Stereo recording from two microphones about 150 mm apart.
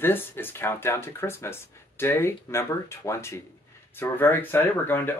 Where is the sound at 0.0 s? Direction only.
15° left (ahead or behind).